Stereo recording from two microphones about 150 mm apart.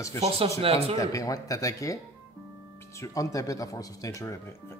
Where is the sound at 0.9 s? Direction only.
20° left (ahead or behind).